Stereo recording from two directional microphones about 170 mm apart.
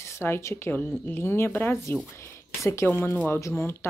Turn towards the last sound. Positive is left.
turn(degrees=15)  # may be behind; listen again after turning